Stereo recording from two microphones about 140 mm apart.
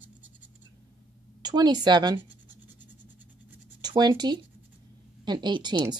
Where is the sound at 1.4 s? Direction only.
30° right (ahead or behind).